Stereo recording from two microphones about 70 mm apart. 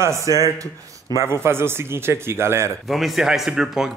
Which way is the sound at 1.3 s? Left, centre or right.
Right.